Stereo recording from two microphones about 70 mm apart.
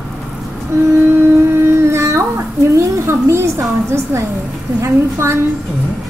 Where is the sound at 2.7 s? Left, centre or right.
Right.